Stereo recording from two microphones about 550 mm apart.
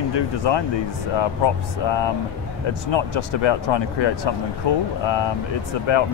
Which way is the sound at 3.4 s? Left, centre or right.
Left.